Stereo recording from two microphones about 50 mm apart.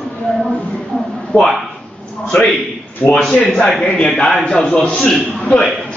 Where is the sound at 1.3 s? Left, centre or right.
Left.